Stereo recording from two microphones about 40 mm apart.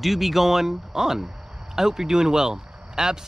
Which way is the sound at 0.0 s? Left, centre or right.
Centre.